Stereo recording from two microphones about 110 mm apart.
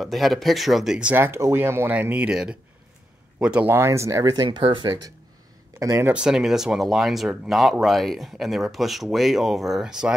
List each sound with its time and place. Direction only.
0.0 s speech: centre (ahead or behind)
1.1 s speech: 20° right (ahead or behind)
3.7 s speech: 25° right (ahead or behind)
4.5 s speech: 50° right (ahead or behind)
5.8 s speech: 25° right (ahead or behind)
6.1 s speech: 5° right (ahead or behind)